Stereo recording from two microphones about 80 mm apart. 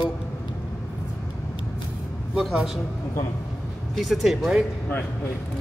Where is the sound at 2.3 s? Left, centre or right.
Centre.